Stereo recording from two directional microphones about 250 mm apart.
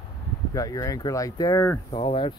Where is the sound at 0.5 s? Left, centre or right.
Centre.